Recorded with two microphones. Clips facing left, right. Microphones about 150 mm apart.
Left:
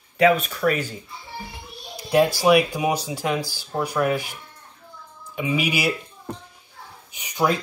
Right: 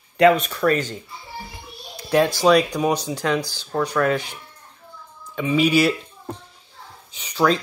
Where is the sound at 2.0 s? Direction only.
10° left (ahead or behind).